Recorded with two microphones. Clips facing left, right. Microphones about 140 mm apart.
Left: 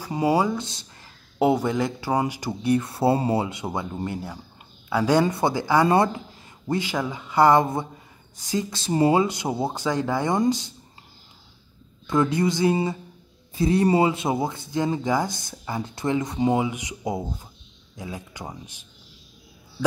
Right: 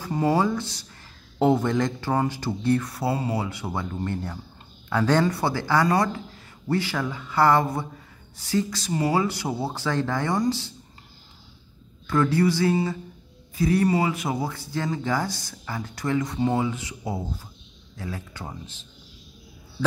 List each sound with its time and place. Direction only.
0.0 s speech: 10° left (ahead or behind)
1.4 s speech: 10° left (ahead or behind)
2.8 s speech: 25° left (ahead or behind)
12.1 s speech: 20° left (ahead or behind)